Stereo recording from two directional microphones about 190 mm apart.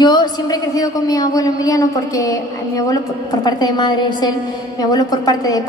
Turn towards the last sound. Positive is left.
turn(degrees=20)  # may be behind; listen again after turning